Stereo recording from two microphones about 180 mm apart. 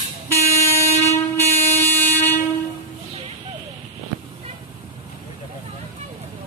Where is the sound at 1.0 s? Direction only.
15° left (ahead or behind).